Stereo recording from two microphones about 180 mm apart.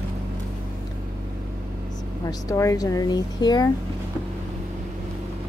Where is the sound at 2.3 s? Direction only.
20° left (ahead or behind).